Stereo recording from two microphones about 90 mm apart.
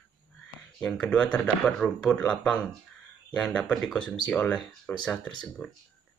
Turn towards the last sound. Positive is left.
turn(degrees=20)  # may be behind; listen again after turning